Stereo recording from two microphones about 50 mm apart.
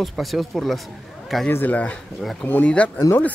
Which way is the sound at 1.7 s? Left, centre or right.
Left.